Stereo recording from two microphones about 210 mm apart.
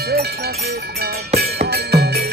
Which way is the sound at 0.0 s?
50° right (ahead or behind).